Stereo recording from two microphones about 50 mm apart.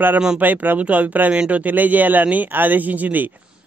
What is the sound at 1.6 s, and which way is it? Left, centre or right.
Speech, right.